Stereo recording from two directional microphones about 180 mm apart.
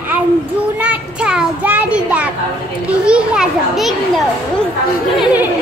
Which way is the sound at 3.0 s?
5° right (ahead or behind).